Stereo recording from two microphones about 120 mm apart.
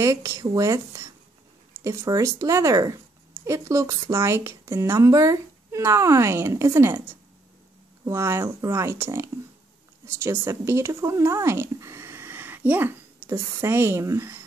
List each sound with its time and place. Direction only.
0.0 s speech: 25° right (ahead or behind)
8.0 s speech: 20° right (ahead or behind)